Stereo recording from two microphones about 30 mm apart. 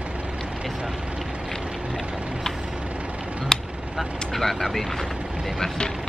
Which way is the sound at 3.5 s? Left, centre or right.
Centre.